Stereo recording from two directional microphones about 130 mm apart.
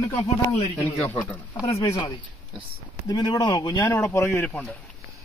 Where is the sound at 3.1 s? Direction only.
35° left (ahead or behind).